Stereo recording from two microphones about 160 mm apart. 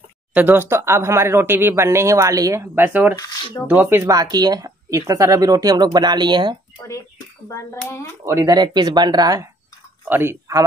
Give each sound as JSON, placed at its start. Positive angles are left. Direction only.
{"t": 0.3, "sound": "speech", "side_deg": -10}
{"t": 7.4, "sound": "a child's voice", "side_deg": 20}
{"t": 8.3, "sound": "speech", "side_deg": -20}